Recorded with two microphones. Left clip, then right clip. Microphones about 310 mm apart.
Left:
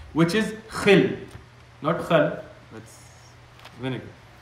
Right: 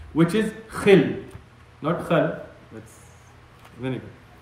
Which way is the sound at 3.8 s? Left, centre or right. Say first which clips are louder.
Right 1 dB; centre.